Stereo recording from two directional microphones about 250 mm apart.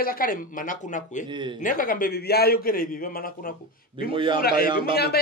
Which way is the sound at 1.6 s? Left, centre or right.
Left.